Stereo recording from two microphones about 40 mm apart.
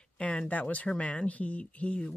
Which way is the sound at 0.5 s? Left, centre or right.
Left.